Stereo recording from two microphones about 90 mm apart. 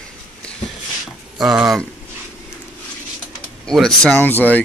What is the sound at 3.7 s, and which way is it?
Speech, 5° left (ahead or behind).